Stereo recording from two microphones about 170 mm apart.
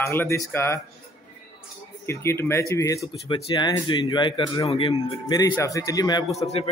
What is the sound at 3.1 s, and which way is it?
Speech, 30° left (ahead or behind).